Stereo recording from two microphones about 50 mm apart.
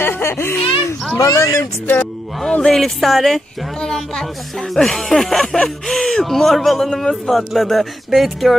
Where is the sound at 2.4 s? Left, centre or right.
Centre.